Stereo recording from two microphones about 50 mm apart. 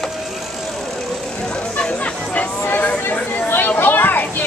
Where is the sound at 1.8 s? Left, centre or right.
Left.